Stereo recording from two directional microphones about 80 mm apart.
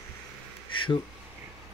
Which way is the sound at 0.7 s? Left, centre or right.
Left.